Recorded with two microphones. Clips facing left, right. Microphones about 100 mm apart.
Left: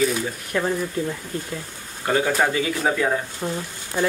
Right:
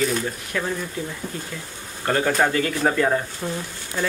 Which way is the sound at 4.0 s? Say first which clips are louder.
Left 3 dB; 15° left (ahead or behind).